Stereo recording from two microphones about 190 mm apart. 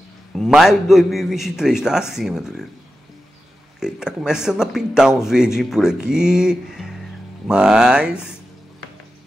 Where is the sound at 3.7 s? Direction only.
5° right (ahead or behind).